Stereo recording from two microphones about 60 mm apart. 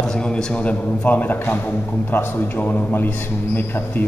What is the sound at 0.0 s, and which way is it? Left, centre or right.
A man's voice, centre.